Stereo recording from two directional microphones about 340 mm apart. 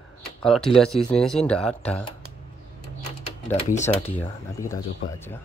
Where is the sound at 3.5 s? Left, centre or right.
Left.